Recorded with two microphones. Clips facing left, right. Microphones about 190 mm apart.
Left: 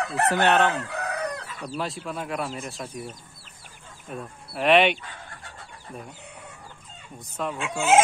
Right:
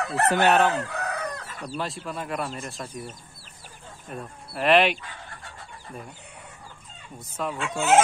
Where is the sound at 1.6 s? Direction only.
Centre (ahead or behind).